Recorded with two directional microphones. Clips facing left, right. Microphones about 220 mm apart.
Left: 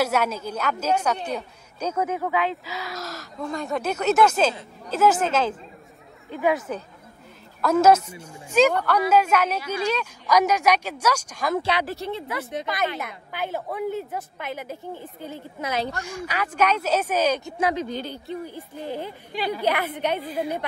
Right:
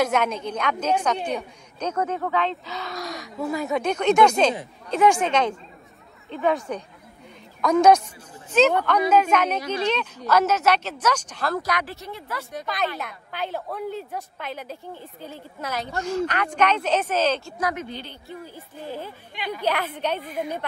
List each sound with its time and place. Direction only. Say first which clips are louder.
0.0 s speech: right 1 dB; 5° left (ahead or behind)
11.5 s a woman's voice: left 6 dB; 30° left (ahead or behind)
13.0 s speech: left 1 dB; 10° left (ahead or behind)
17.6 s a woman's voice: left 3 dB; 30° left (ahead or behind)
17.8 s a woman's voice: left 5 dB; 40° left (ahead or behind)
18.3 s speech: left 3 dB; 15° left (ahead or behind)
19.3 s speech: left 5 dB; 35° left (ahead or behind)
19.6 s speech: right 1 dB; 10° left (ahead or behind)